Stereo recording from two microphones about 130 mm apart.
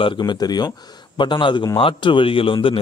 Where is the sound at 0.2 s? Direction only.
30° left (ahead or behind).